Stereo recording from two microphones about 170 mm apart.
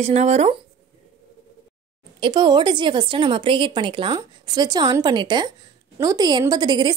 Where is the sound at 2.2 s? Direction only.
25° right (ahead or behind).